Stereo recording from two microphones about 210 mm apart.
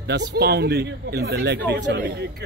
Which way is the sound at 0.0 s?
55° right (ahead or behind).